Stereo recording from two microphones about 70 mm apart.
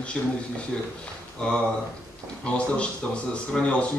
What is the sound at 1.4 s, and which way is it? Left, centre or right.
Speech, centre.